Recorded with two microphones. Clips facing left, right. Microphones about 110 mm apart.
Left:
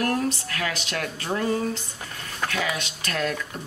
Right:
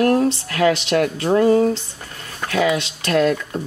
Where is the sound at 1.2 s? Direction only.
40° right (ahead or behind).